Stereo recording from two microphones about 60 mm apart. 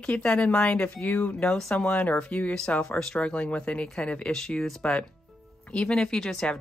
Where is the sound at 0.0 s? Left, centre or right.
Centre.